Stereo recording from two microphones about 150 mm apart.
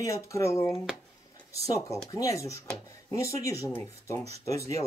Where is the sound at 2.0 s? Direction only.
20° left (ahead or behind).